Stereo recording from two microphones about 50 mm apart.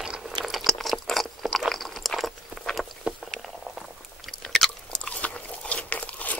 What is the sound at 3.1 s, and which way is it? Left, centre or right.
Boat, right.